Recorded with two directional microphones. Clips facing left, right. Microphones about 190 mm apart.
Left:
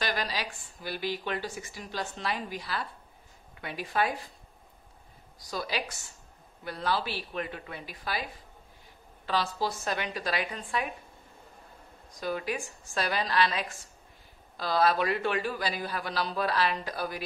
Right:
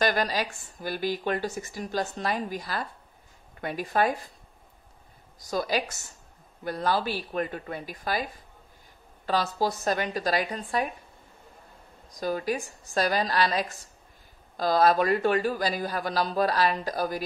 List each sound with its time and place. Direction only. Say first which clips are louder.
0.0 s a woman's voice: right 7 dB; 45° right (ahead or behind)
5.4 s a woman's voice: right 6 dB; 45° right (ahead or behind)
12.2 s a man's voice: right 4 dB; 40° right (ahead or behind)